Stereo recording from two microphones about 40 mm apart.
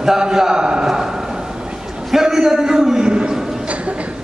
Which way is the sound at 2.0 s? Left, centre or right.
Centre.